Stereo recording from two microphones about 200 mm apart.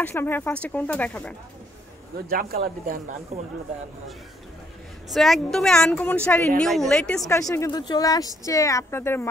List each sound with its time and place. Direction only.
0.0 s speech: 10° left (ahead or behind)
2.1 s speech: 50° right (ahead or behind)
3.3 s speech: 35° right (ahead or behind)
5.1 s speech: centre (ahead or behind)